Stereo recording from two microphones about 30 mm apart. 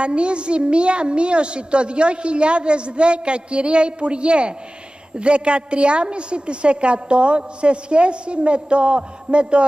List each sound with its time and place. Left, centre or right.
0.0 s a woman's voice: right